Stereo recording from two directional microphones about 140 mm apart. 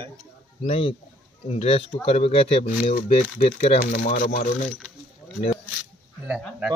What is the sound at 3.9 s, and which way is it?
Speech, 75° left (ahead or behind).